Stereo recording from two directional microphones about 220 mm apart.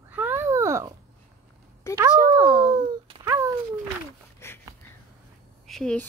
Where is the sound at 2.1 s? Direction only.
15° left (ahead or behind).